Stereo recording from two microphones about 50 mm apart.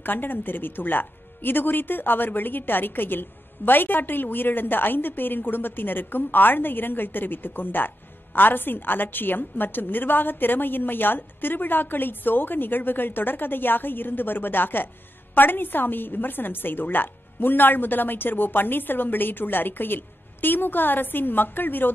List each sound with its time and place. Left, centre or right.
0.0 s speech: left